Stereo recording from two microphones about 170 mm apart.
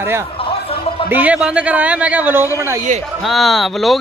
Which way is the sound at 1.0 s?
10° right (ahead or behind).